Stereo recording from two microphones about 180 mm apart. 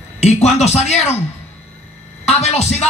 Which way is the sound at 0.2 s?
35° left (ahead or behind).